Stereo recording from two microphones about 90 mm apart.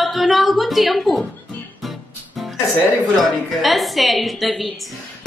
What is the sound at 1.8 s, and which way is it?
Music, centre (ahead or behind).